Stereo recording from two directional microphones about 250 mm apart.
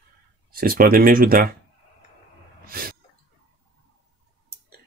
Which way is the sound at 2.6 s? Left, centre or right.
Right.